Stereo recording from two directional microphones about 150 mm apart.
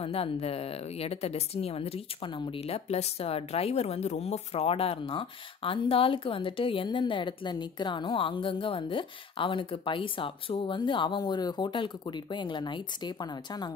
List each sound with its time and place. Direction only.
0.0 s a woman's voice: 40° left (ahead or behind)